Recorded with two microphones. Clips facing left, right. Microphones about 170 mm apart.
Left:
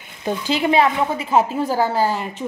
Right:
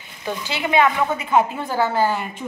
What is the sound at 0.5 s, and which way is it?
A woman's voice, 35° left (ahead or behind).